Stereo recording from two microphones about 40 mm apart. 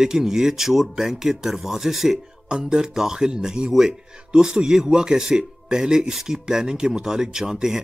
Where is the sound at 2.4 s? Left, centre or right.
Centre.